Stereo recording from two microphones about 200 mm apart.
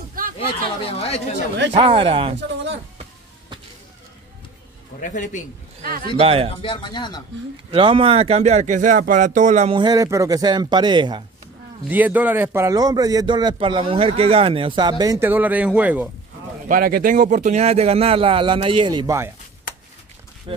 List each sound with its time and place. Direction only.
0.2 s a sound: 45° right (ahead or behind)
0.8 s speech: 30° left (ahead or behind)
1.7 s a man's voice: 25° right (ahead or behind)
5.0 s a man's voice: 40° left (ahead or behind)
5.8 s speech: 45° right (ahead or behind)
6.1 s a man's voice: 30° right (ahead or behind)
6.6 s speech: 25° left (ahead or behind)
7.7 s speech: 25° right (ahead or behind)
9.8 s a man's voice: 20° right (ahead or behind)
11.9 s a man's voice: 10° right (ahead or behind)
16.6 s speech: 45° right (ahead or behind); by 19.3 s 15° right (ahead or behind)
20.5 s a man's voice: 25° right (ahead or behind)